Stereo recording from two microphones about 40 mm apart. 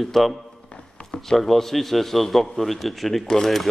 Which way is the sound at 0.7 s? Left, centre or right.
Left.